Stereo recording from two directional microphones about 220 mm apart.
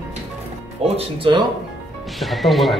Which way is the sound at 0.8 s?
25° right (ahead or behind).